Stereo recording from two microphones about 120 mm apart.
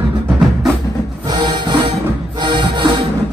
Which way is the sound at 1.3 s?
40° right (ahead or behind).